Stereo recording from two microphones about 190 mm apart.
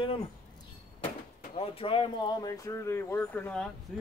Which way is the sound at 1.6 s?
30° left (ahead or behind).